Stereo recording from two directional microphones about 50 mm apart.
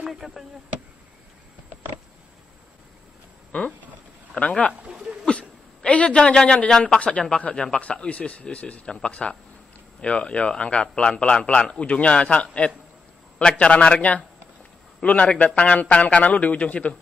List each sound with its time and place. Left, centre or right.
0.0 s speech: centre
4.4 s a man's voice: left
5.2 s a sound: centre
6.3 s a man's voice: centre